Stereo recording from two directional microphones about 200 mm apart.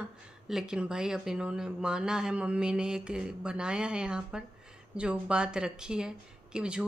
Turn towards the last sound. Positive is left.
turn(degrees=-5)  # may be behind; listen again after turning